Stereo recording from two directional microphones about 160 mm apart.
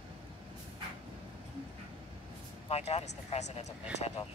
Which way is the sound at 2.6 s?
40° left (ahead or behind).